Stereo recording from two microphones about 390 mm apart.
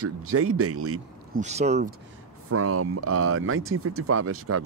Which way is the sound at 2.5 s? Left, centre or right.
Right.